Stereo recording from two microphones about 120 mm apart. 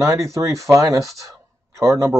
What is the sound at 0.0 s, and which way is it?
Speech, 25° right (ahead or behind).